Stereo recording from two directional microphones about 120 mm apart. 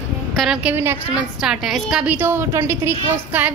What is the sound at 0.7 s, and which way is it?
Speech, 20° right (ahead or behind).